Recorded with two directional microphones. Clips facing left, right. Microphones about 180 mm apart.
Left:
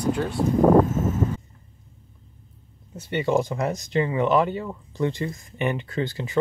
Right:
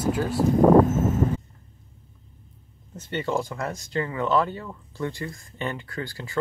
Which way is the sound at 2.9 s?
10° left (ahead or behind).